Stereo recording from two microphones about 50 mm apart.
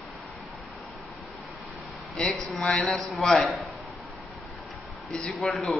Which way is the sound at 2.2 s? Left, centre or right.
Centre.